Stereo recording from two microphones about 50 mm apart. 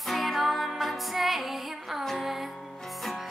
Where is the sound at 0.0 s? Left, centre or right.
Centre.